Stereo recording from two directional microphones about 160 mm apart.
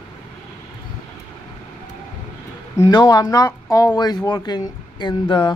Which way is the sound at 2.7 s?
25° left (ahead or behind).